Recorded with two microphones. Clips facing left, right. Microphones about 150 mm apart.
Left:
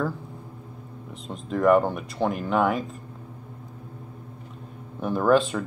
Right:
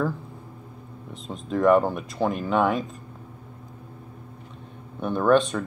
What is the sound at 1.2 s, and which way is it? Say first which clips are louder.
Speech: right 1 dB; centre (ahead or behind).